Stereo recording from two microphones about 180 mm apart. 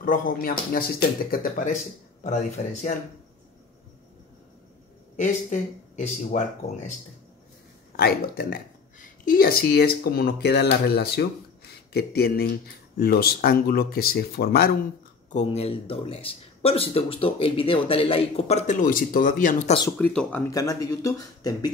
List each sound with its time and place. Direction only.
0.0 s speech: 50° left (ahead or behind)
2.2 s speech: 40° left (ahead or behind)
5.1 s speech: 45° left (ahead or behind)
7.9 s speech: 60° left (ahead or behind)
15.3 s speech: 35° left (ahead or behind)
20.0 s speech: 5° left (ahead or behind)